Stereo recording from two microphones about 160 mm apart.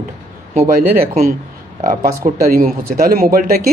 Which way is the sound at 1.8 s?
50° right (ahead or behind).